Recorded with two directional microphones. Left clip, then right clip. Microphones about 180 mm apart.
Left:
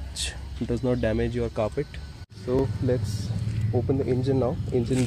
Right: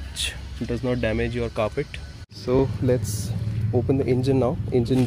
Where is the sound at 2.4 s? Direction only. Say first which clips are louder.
Right 4 dB; 25° right (ahead or behind).